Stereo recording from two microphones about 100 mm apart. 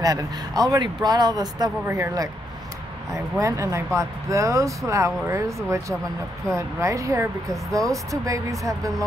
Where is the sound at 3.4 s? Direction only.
30° right (ahead or behind).